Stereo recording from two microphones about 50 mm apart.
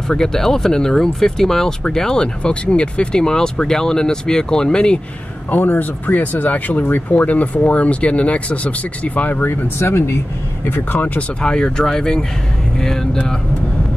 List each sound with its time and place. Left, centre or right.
0.1 s speech: centre
5.5 s speech: left
9.4 s speech: left
10.7 s speech: left
11.4 s speech: centre